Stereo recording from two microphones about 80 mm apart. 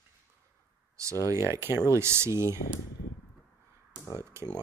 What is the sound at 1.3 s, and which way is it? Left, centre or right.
Speech, right.